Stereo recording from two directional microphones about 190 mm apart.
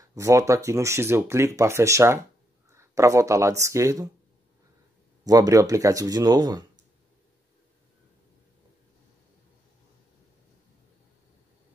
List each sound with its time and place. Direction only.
0.1 s speech: 15° right (ahead or behind)
5.2 s speech: 20° right (ahead or behind)